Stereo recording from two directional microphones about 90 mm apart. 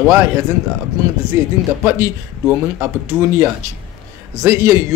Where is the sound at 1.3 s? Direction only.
25° right (ahead or behind).